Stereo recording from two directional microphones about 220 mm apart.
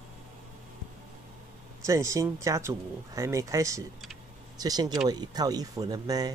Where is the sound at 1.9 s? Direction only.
15° right (ahead or behind).